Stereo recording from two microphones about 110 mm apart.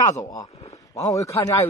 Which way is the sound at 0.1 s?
35° left (ahead or behind).